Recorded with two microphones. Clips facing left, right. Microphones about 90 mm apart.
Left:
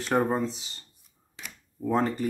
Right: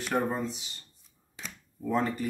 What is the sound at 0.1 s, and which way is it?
Speech, 35° left (ahead or behind).